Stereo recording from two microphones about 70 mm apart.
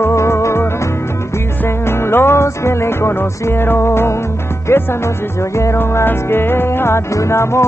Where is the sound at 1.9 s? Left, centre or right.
Left.